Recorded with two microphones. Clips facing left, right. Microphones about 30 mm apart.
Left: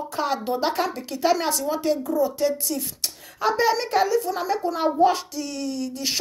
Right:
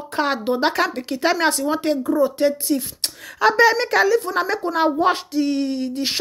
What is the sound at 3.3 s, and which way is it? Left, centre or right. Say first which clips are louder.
Speech: right 6 dB; right.